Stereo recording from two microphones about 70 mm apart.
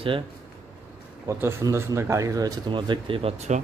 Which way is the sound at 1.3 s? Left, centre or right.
Right.